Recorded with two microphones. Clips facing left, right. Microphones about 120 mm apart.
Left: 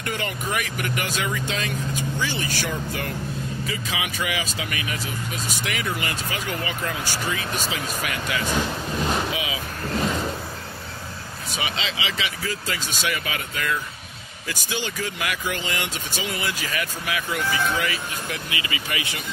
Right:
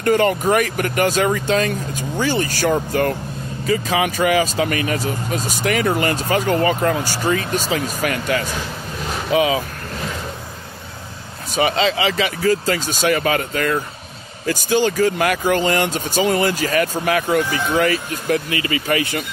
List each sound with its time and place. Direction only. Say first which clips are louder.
0.0 s speech: right 13 dB; 45° right (ahead or behind)
8.5 s vehicle: left 3 dB; centre (ahead or behind)
9.3 s speech: right 12 dB; 45° right (ahead or behind)
11.5 s speech: right 12 dB; 45° right (ahead or behind)